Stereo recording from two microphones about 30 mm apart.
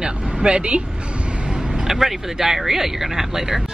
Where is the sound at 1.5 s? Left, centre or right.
Right.